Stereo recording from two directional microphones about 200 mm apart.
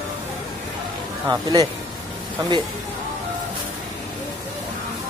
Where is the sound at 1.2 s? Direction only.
20° right (ahead or behind).